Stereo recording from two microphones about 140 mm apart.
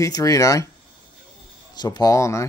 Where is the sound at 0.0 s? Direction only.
25° left (ahead or behind).